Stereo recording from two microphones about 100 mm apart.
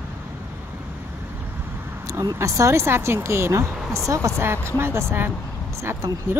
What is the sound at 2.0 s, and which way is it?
Speech, 30° right (ahead or behind).